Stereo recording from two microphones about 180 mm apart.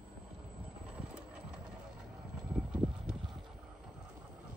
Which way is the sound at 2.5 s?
5° right (ahead or behind).